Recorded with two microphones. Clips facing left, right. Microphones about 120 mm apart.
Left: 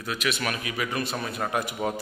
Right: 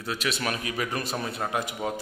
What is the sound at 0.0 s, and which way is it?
A man's voice, 30° right (ahead or behind).